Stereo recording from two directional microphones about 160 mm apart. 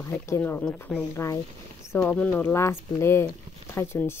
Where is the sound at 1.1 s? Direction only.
20° left (ahead or behind).